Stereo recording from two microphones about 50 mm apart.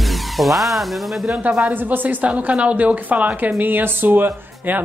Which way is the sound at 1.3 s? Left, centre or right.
Right.